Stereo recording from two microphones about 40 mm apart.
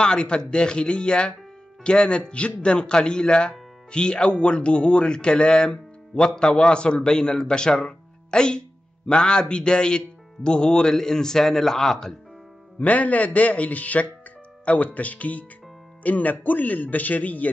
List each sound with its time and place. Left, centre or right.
0.0 s speech: left
12.7 s speech: left